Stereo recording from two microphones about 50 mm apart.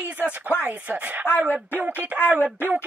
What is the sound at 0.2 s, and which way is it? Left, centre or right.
Speech, left.